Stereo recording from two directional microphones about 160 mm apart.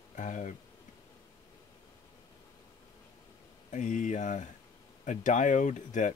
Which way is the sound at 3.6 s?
50° left (ahead or behind).